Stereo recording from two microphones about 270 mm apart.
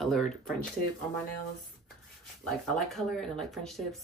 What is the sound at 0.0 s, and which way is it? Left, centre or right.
Speech, centre.